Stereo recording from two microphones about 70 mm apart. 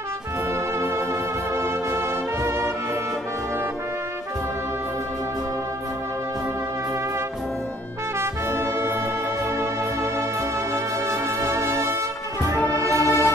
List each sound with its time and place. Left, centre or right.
0.7 s music: right
8.2 s brass instrument: right
11.1 s music: right